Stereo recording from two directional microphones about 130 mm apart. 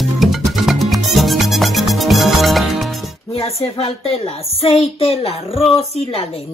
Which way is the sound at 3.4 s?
50° left (ahead or behind).